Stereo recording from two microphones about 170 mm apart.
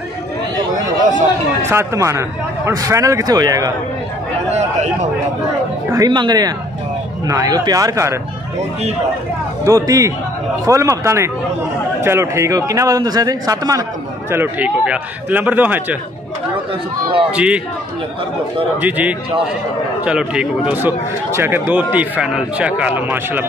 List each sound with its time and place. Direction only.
1.7 s a man's voice: 15° right (ahead or behind)
5.9 s a man's voice: 25° right (ahead or behind)
9.7 s a man's voice: 20° right (ahead or behind)
17.3 s a man's voice: 5° right (ahead or behind)
18.8 s a man's voice: 10° right (ahead or behind)